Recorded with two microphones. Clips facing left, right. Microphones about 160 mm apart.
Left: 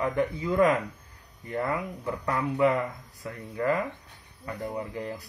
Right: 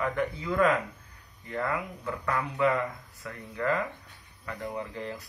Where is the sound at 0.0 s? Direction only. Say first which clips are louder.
Left 3 dB; 25° left (ahead or behind).